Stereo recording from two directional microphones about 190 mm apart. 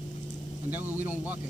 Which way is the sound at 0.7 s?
10° right (ahead or behind).